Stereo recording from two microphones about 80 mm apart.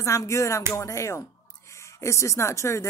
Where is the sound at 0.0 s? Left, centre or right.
Left.